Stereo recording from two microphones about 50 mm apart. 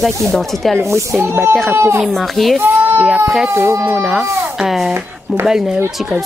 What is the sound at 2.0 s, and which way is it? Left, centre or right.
Speech, centre.